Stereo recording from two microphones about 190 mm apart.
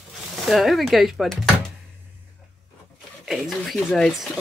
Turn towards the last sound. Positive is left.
turn(degrees=0)  # may be behind; listen again after turning